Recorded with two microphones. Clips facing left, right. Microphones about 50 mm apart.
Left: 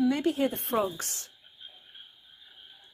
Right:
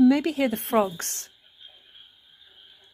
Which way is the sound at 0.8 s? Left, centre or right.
Right.